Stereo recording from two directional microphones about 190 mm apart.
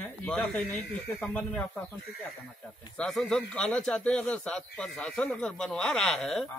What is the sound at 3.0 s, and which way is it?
A man's voice, 5° left (ahead or behind).